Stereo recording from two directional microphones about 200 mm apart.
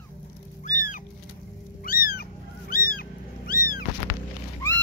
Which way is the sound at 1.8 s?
45° left (ahead or behind).